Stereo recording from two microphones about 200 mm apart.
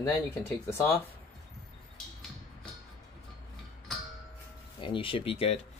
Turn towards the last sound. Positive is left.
turn(degrees=30)  # may be behind; listen again after turning